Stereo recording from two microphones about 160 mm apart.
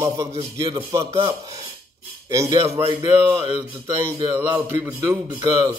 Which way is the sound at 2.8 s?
15° right (ahead or behind).